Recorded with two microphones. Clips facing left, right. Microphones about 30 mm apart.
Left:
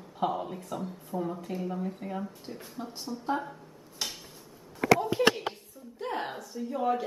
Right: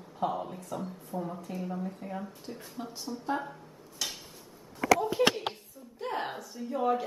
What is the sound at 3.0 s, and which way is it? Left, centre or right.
Speech, centre.